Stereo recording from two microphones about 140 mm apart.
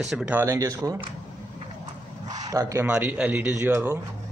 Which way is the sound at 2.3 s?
25° right (ahead or behind).